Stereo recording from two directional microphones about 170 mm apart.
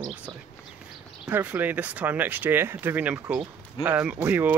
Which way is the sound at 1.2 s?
10° right (ahead or behind).